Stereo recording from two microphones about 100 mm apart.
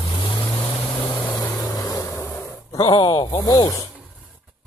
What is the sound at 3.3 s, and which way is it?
Speech, 35° left (ahead or behind).